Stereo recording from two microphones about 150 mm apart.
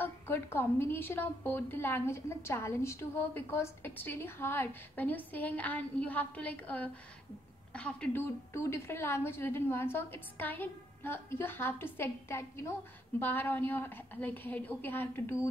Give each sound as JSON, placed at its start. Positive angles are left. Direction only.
{"t": 0.0, "sound": "a woman's voice", "side_deg": 15}